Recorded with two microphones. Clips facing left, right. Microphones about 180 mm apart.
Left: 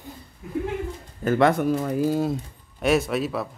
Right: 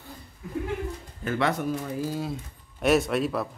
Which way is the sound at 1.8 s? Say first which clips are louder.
Left 8 dB; 60° left (ahead or behind).